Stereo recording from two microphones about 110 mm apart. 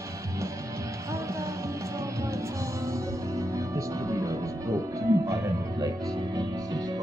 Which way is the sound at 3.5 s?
30° right (ahead or behind).